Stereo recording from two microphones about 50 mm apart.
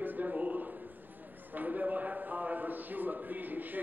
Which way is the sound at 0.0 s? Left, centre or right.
Right.